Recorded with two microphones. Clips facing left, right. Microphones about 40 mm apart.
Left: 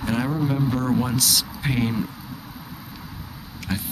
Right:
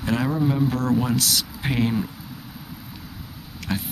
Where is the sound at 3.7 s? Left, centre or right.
Centre.